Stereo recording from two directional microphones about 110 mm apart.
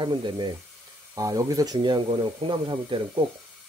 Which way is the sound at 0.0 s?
45° right (ahead or behind).